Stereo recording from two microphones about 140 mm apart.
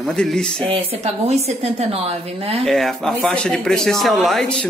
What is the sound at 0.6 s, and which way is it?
A woman's voice, 45° right (ahead or behind).